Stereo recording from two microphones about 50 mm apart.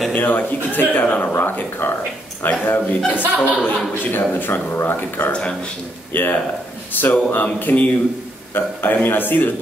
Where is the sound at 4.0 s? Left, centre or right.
Left.